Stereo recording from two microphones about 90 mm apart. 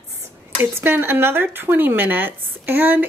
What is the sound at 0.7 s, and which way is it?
Speech, 25° right (ahead or behind).